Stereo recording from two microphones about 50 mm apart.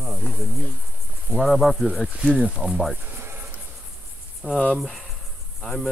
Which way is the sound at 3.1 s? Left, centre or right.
Right.